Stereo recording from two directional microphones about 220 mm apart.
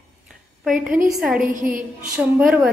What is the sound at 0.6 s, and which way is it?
Speech, centre (ahead or behind).